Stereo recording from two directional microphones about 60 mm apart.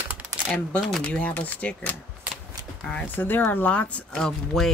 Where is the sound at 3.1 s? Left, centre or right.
Left.